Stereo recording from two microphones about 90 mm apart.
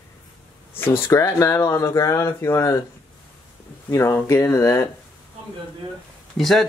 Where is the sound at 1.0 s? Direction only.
35° left (ahead or behind).